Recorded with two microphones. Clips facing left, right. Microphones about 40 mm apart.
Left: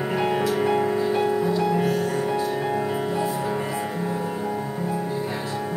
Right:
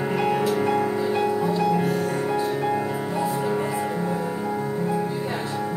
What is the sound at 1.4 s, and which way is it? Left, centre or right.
Music, centre.